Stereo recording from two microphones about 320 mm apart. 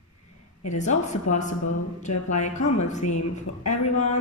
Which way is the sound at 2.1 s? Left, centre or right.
Left.